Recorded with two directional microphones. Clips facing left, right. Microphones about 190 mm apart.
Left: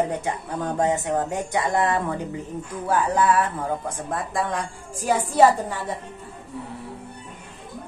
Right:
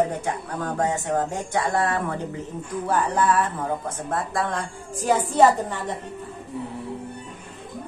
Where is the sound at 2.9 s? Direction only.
5° left (ahead or behind).